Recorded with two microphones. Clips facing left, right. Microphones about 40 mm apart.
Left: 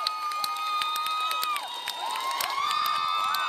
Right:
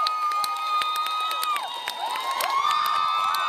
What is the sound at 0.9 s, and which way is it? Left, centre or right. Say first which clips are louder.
Crowd: right 2 dB; centre.